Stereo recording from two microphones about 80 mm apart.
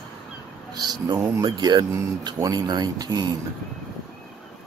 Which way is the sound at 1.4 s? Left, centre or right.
Right.